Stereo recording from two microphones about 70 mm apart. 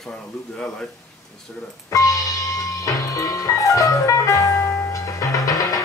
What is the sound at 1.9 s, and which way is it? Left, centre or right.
Music, left.